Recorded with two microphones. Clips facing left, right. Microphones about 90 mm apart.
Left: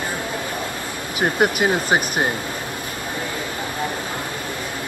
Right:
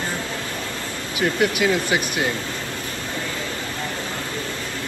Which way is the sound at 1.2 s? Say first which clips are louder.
Left 1 dB; 45° left (ahead or behind).